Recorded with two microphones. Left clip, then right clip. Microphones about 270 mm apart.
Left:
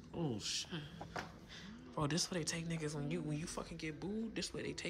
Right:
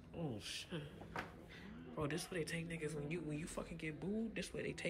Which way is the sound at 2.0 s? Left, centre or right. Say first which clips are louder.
Left 4 dB; centre.